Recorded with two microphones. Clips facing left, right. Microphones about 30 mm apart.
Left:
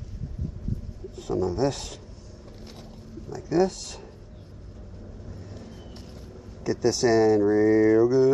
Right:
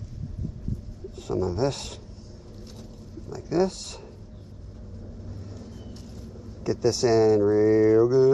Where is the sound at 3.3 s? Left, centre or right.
Left.